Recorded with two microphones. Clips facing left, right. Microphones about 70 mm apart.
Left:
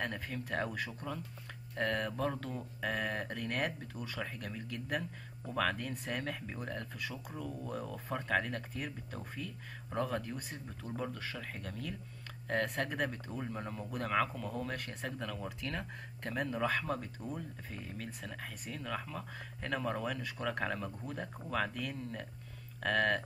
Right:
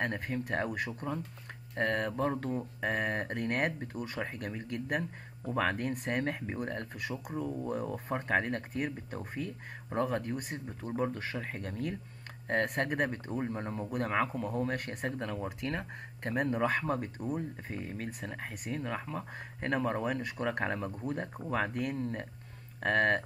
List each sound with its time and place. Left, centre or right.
0.0 s speech: right
5.5 s speech: right
9.8 s speech: right
14.8 s speech: right
15.0 s speech: right
21.7 s speech: right